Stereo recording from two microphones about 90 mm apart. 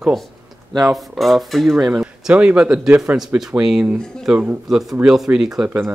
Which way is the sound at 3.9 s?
10° left (ahead or behind).